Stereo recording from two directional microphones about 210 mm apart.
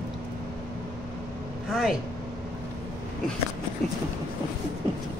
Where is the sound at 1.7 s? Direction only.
Centre (ahead or behind).